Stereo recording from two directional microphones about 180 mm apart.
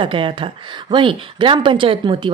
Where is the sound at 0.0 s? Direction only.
30° right (ahead or behind).